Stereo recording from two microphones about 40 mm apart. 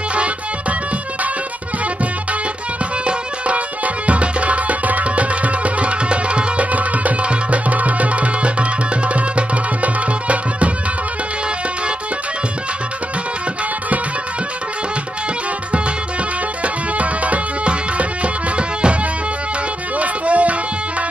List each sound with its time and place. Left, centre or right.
0.1 s music: right
3.1 s music: right
16.6 s music: right
20.0 s music: right